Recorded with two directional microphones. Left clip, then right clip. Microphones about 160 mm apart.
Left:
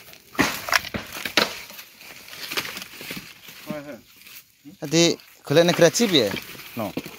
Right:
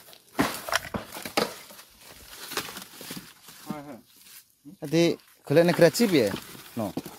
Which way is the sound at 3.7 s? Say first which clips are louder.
Left 5 dB; 30° right (ahead or behind).